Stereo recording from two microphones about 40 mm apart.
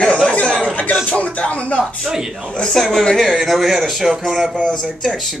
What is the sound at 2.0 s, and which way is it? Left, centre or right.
Speech, centre.